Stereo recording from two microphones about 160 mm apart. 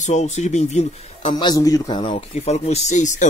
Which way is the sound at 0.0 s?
45° left (ahead or behind).